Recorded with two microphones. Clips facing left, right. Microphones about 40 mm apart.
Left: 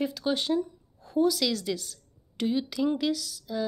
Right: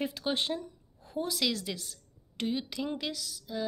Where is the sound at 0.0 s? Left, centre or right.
Right.